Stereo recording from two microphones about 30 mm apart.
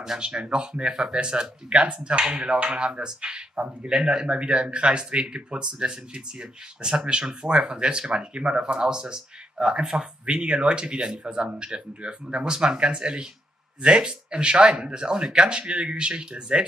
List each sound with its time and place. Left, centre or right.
0.2 s speech: right